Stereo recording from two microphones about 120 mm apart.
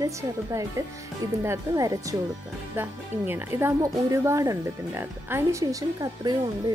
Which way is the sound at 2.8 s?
20° right (ahead or behind).